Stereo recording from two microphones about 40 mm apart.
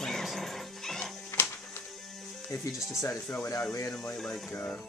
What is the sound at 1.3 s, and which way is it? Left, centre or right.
Music, left.